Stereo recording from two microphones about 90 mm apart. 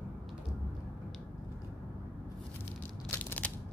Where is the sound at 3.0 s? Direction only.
20° left (ahead or behind).